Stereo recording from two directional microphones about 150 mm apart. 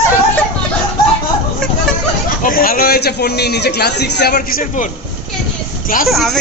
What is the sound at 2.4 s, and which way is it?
A man's voice, 70° left (ahead or behind).